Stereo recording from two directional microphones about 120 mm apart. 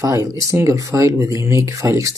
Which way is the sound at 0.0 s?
30° right (ahead or behind).